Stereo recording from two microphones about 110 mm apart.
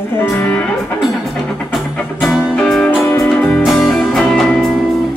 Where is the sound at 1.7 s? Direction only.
Centre (ahead or behind).